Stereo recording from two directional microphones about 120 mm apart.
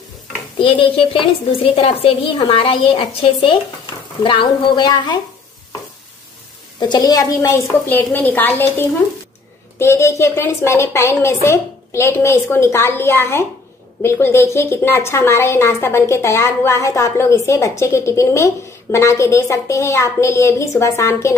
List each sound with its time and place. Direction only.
0.6 s a woman's voice: 45° left (ahead or behind)
6.8 s a woman's voice: 35° left (ahead or behind)